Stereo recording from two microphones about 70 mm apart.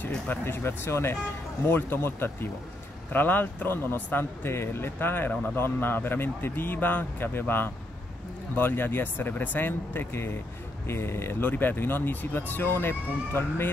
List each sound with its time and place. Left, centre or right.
0.3 s a man's voice: left
11.4 s speech: left